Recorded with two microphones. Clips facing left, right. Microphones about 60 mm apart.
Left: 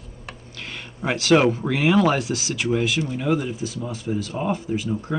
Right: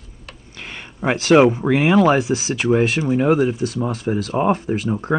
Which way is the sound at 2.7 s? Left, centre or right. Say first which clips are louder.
Right 7 dB; right.